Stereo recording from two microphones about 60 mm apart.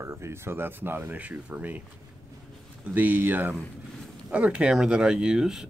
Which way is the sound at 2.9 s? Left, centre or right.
Right.